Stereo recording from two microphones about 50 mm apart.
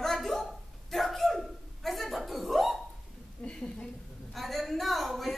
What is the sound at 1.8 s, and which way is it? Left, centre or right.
Dog, centre.